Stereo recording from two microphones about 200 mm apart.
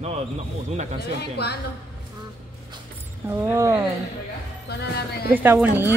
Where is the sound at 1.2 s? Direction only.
55° left (ahead or behind).